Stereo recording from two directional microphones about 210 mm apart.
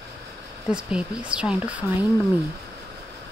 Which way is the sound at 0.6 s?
5° right (ahead or behind).